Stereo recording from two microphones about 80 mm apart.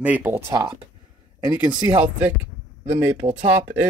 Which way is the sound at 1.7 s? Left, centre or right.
Right.